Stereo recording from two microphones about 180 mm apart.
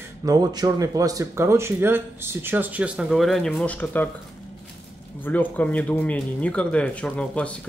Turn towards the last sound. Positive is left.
turn(degrees=5)  # may be behind; listen again after turning